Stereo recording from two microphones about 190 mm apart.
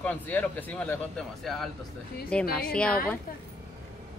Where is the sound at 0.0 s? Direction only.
10° left (ahead or behind).